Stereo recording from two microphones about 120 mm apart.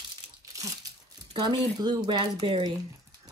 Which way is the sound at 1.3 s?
35° right (ahead or behind).